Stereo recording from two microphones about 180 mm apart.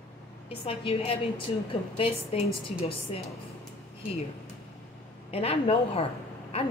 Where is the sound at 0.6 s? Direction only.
30° left (ahead or behind).